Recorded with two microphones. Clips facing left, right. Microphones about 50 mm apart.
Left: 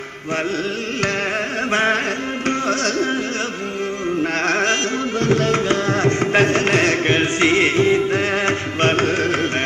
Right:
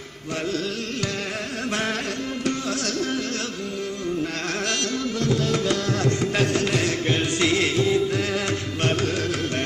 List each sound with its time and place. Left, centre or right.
1.7 s carnatic music: left
2.4 s music: left
4.2 s carnatic music: left
5.2 s music: left